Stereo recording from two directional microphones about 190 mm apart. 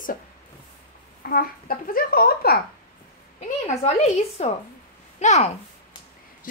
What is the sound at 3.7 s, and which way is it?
A woman's voice, 35° left (ahead or behind).